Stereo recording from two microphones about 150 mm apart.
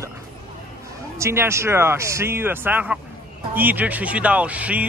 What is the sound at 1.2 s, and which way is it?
Speech, 15° right (ahead or behind).